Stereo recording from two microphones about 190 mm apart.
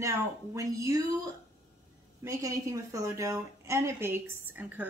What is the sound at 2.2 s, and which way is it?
Speech, 15° right (ahead or behind).